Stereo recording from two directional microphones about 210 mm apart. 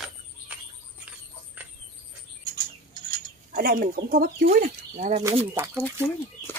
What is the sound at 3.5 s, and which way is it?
Speech, 40° right (ahead or behind).